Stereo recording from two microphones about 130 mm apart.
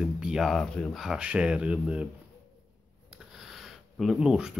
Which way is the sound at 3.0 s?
5° right (ahead or behind).